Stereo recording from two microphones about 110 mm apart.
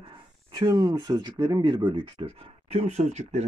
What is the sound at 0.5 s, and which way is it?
Speech, 40° right (ahead or behind).